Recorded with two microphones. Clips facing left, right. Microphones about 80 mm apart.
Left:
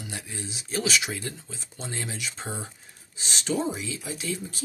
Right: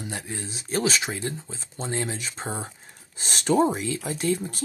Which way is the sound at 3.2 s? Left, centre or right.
Right.